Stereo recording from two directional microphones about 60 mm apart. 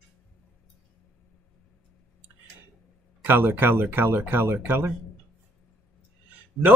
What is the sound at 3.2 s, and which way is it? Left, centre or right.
Speech, right.